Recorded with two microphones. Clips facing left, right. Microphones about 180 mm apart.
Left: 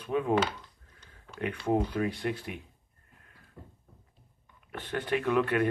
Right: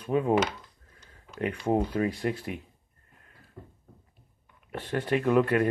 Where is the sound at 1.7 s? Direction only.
20° right (ahead or behind).